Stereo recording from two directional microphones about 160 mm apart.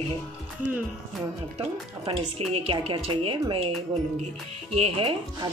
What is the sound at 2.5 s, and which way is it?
Speech, 35° right (ahead or behind).